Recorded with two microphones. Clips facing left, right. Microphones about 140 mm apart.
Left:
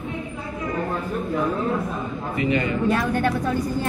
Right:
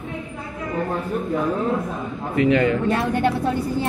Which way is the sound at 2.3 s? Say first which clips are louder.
Right 6 dB; 90° right.